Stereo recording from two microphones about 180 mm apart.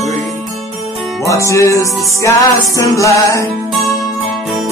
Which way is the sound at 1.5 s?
15° left (ahead or behind).